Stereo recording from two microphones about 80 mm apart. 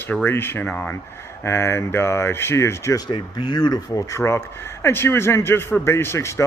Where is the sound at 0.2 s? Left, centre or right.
Left.